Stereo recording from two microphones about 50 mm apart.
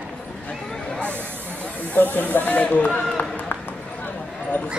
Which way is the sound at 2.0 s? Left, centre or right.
Left.